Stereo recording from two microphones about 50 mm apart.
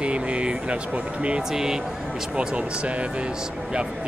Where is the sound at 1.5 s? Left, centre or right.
Centre.